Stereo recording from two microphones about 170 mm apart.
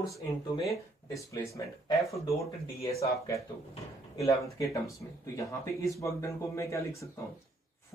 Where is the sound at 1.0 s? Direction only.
20° left (ahead or behind).